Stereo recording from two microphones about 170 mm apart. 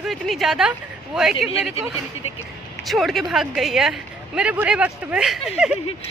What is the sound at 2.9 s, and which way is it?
Speech, centre (ahead or behind).